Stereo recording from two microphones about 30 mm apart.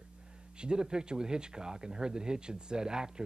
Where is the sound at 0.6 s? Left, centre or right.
Right.